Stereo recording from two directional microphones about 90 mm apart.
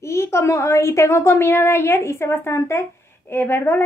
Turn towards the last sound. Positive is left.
turn(degrees=25)  # may be behind; listen again after turning